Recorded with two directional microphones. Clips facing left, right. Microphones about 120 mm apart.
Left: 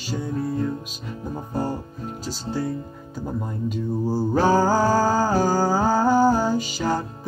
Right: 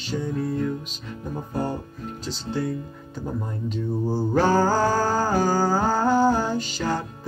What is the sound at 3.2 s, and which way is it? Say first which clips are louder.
Music: left 2 dB; 10° left (ahead or behind).